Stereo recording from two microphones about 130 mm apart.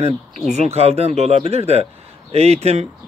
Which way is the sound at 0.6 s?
55° right (ahead or behind).